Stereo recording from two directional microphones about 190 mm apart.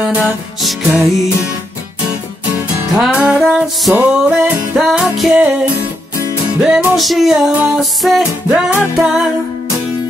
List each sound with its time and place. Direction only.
0.0 s music: 5° right (ahead or behind)
2.9 s music: 5° right (ahead or behind)